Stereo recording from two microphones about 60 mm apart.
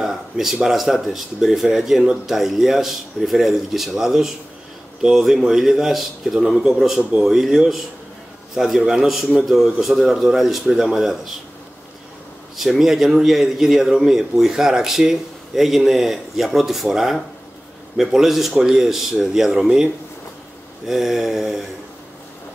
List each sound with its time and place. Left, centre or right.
0.0 s a man's voice: centre
7.0 s a man's voice: centre
7.2 s a man's voice: centre
12.5 s a man's voice: centre